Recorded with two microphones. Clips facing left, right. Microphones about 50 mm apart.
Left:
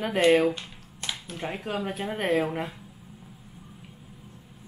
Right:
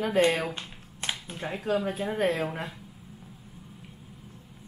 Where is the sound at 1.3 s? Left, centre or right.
Left.